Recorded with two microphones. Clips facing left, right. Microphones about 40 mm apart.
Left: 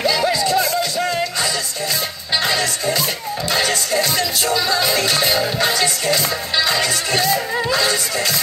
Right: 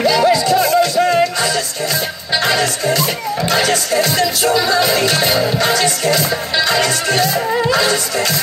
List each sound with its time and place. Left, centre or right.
0.0 s music: centre